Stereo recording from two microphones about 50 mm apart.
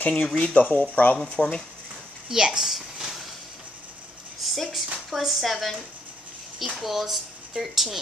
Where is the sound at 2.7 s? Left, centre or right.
Centre.